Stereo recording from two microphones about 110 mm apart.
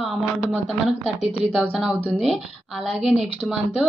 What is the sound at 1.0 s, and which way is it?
Speech, 75° right (ahead or behind).